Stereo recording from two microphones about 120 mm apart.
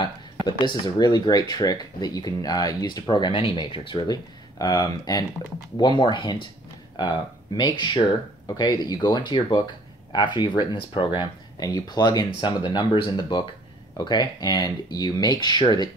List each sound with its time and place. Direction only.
0.5 s speech: 35° left (ahead or behind)